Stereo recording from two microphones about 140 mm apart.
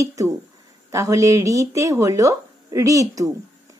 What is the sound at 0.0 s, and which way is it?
A woman's voice, 25° right (ahead or behind).